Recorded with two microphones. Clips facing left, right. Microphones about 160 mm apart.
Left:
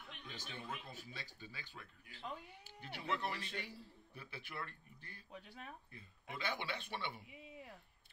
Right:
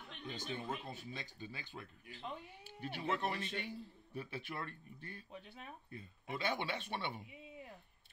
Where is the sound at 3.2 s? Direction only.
20° right (ahead or behind).